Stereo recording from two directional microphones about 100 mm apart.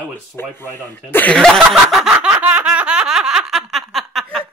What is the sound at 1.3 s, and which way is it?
Speech, 5° left (ahead or behind).